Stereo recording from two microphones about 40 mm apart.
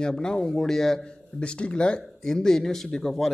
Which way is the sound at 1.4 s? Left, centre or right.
Left.